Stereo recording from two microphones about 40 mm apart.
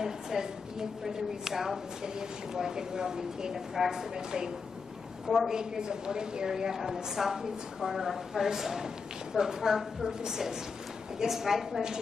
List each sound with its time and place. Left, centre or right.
0.0 s a woman's voice: centre
5.5 s a woman's voice: centre